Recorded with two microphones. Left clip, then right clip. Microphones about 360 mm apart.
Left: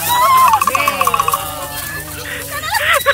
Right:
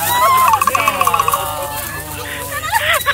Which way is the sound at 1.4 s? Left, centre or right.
Centre.